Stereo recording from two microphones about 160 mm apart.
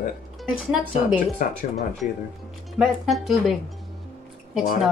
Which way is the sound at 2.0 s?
50° left (ahead or behind).